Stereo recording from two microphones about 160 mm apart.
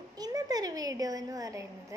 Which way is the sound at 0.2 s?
25° right (ahead or behind).